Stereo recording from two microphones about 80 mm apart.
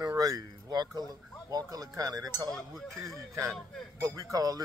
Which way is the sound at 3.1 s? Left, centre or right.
Right.